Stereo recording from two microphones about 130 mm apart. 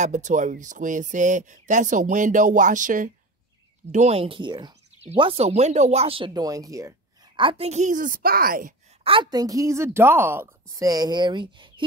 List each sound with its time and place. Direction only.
0.0 s speech: 70° right (ahead or behind); by 3.1 s 85° right
3.9 s speech: 55° right (ahead or behind)
6.3 s a woman's voice: 25° right (ahead or behind)
7.3 s speech: 45° right (ahead or behind); by 8.7 s 90° right
9.0 s a woman's voice: 40° right (ahead or behind); by 10.9 s 20° right (ahead or behind)
10.9 s speech: 30° right (ahead or behind)